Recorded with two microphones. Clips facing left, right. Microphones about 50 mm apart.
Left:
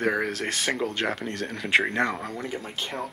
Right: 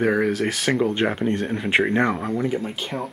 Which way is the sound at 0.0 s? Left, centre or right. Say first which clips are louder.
Right 6 dB; centre.